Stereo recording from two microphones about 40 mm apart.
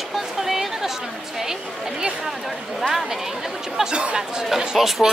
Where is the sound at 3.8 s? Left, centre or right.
Right.